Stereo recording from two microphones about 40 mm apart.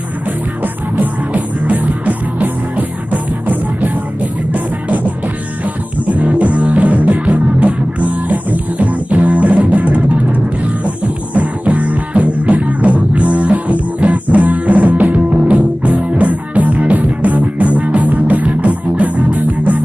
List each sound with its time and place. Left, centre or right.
0.9 s music: right